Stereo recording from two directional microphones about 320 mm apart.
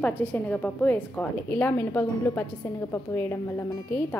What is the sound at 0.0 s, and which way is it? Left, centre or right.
A woman's voice, centre.